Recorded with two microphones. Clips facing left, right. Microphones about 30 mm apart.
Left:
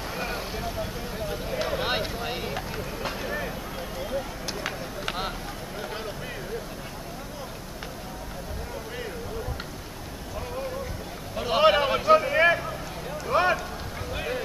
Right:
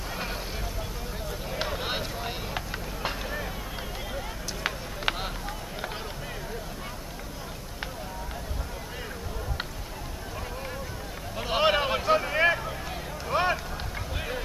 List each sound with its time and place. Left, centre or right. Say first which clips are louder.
0.1 s vehicle: left 2 dB; centre
1.7 s vehicle: left 4 dB; centre
2.5 s vehicle: left 2 dB; centre
3.2 s vehicle: left 3 dB; centre
5.1 s a sound: right 3 dB; right
11.3 s a sound: left 4 dB; centre
13.3 s run: left 3 dB; centre
14.1 s vehicle: left 4 dB; centre